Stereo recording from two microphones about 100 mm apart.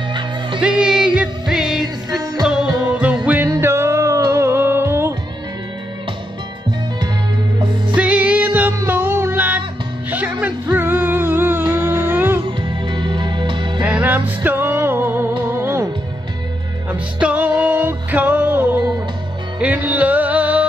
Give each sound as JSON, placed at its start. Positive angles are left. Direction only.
{"t": 0.6, "sound": "music", "side_deg": -10}
{"t": 3.6, "sound": "music", "side_deg": -25}
{"t": 7.9, "sound": "music", "side_deg": -15}
{"t": 10.7, "sound": "music", "side_deg": -20}
{"t": 12.4, "sound": "music", "side_deg": -50}
{"t": 13.8, "sound": "music", "side_deg": -15}
{"t": 16.9, "sound": "music", "side_deg": -15}